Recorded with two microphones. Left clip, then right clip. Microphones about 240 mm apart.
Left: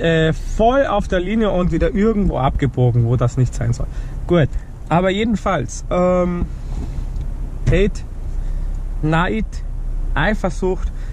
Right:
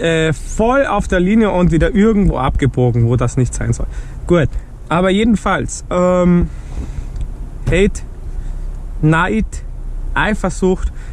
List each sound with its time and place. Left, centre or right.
0.0 s speech: right
9.0 s speech: right